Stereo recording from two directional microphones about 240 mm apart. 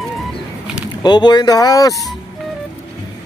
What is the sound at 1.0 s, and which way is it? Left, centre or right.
Speech, centre.